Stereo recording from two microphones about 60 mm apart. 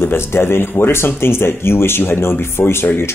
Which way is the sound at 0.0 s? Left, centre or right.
Left.